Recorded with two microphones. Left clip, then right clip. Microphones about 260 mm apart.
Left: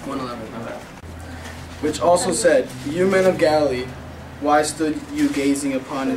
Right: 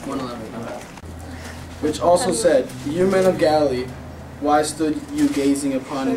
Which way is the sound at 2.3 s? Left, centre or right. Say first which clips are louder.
Even; centre.